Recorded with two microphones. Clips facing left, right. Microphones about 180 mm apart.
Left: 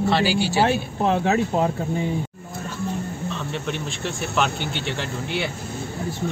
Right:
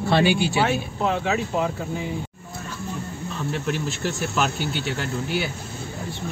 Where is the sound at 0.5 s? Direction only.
35° left (ahead or behind).